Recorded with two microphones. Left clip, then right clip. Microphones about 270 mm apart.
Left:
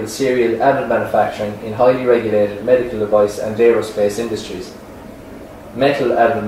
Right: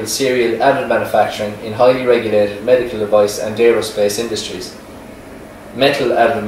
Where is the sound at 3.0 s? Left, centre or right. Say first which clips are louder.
Right 1 dB; left.